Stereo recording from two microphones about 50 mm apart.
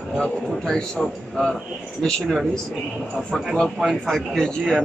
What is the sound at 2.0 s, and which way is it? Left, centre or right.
Speech, centre.